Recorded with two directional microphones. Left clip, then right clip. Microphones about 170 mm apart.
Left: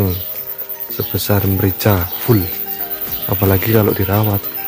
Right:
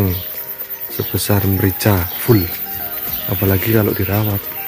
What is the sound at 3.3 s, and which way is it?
Speech, 20° left (ahead or behind).